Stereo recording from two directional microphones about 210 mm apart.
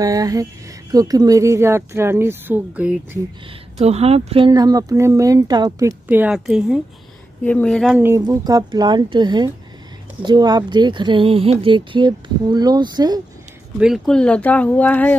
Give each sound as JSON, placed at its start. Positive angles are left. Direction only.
{"t": 0.0, "sound": "speech", "side_deg": -15}
{"t": 3.7, "sound": "speech", "side_deg": -30}
{"t": 8.0, "sound": "speech", "side_deg": -15}
{"t": 13.7, "sound": "speech", "side_deg": 0}